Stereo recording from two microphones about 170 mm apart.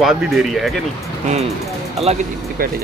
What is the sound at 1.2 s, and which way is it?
Speech, 40° right (ahead or behind).